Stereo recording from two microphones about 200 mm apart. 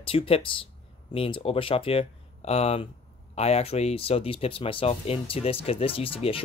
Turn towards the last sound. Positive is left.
turn(degrees=25)  # may be behind; listen again after turning